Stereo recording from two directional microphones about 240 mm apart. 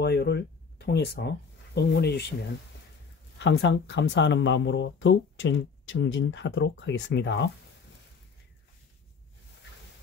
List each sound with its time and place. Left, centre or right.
0.0 s speech: left
3.3 s speech: left